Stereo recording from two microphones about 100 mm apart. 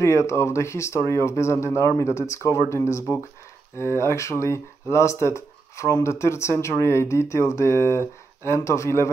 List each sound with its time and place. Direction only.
0.0 s speech: 30° left (ahead or behind)